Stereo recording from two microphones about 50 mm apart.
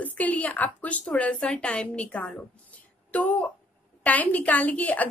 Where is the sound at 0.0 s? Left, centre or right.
Left.